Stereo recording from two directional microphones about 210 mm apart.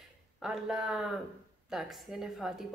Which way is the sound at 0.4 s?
Centre (ahead or behind).